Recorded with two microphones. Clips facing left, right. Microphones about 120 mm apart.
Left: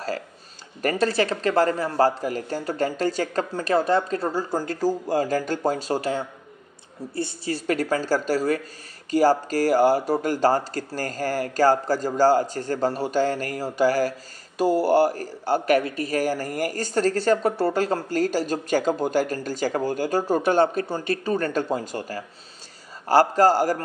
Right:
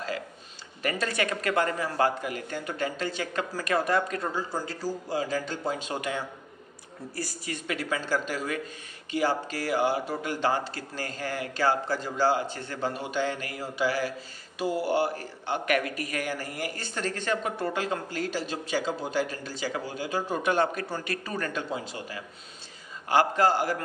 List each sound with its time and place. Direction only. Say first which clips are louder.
0.8 s a man's voice: left 7 dB; 35° left (ahead or behind)
3.5 s a man's voice: left 5 dB; 30° left (ahead or behind)
7.6 s a man's voice: left 8 dB; 40° left (ahead or behind)